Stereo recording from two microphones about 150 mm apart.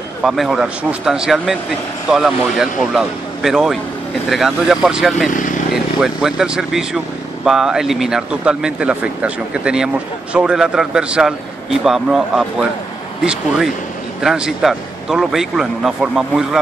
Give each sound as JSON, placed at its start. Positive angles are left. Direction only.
{"t": 0.2, "sound": "speech", "side_deg": -5}
{"t": 5.3, "sound": "vehicle", "side_deg": 60}
{"t": 5.7, "sound": "speech", "side_deg": -5}